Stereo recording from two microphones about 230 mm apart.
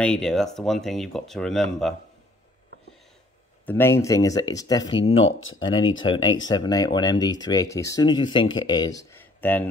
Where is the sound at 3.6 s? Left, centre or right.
Centre.